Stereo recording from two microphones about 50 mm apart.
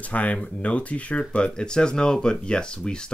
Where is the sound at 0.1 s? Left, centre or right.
Left.